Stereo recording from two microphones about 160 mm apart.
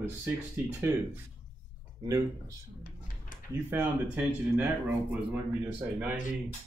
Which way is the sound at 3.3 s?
55° left (ahead or behind).